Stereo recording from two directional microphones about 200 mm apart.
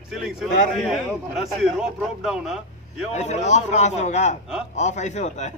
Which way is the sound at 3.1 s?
35° left (ahead or behind).